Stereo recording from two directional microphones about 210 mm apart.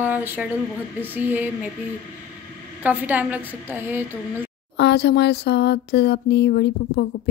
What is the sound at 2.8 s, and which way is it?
Speech, 10° right (ahead or behind).